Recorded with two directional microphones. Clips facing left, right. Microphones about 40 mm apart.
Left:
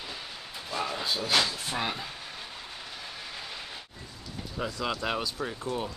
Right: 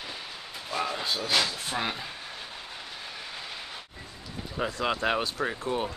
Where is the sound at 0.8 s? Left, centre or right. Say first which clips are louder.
Left 2 dB; centre.